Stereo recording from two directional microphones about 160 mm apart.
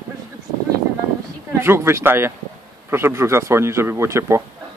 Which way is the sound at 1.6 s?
15° right (ahead or behind).